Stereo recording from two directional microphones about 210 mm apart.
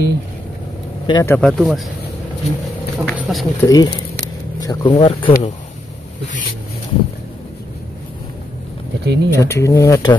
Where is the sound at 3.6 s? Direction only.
15° left (ahead or behind).